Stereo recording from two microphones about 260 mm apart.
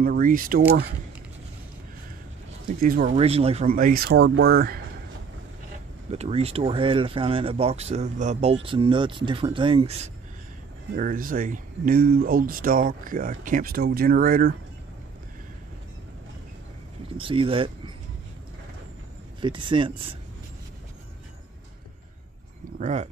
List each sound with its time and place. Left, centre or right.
0.0 s speech: right
2.8 s speech: right
3.2 s speech: right
3.6 s speech: right
6.0 s speech: right
17.2 s speech: centre
19.4 s speech: centre
22.8 s speech: right